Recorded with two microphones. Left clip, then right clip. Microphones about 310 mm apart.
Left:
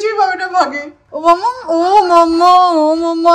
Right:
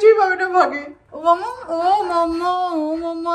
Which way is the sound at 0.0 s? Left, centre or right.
Centre.